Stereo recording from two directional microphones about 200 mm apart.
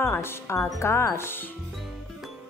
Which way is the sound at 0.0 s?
15° left (ahead or behind).